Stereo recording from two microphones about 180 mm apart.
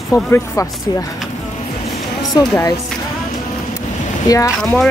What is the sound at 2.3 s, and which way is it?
Speech, 15° left (ahead or behind).